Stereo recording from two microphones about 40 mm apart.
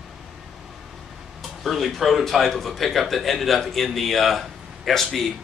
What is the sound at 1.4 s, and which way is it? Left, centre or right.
Speech, centre.